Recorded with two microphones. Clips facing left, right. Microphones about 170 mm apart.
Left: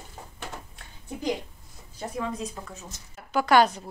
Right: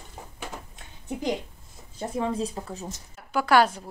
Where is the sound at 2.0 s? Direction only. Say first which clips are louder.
Right 4 dB; 30° right (ahead or behind).